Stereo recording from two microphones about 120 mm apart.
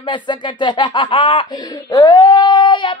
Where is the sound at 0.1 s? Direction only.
40° left (ahead or behind).